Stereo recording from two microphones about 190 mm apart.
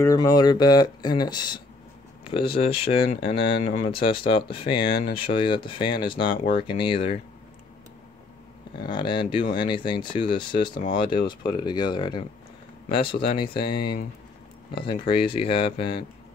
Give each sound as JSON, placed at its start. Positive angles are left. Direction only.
{"t": 0.0, "sound": "speech", "side_deg": 20}
{"t": 8.8, "sound": "speech", "side_deg": 25}
{"t": 15.0, "sound": "speech", "side_deg": 30}